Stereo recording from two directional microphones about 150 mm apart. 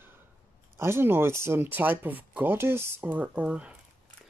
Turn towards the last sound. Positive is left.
turn(degrees=-10)  # may be behind; listen again after turning